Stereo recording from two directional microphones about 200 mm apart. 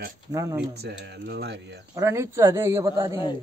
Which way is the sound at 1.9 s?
15° right (ahead or behind).